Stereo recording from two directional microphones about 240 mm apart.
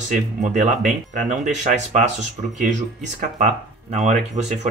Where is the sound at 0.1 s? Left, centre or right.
Right.